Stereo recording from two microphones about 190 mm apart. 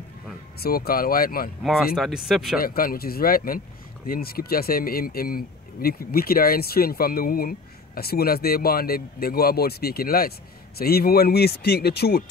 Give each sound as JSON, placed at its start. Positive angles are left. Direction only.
{"t": 0.6, "sound": "speech", "side_deg": 50}
{"t": 1.6, "sound": "speech", "side_deg": 0}
{"t": 2.6, "sound": "speech", "side_deg": 50}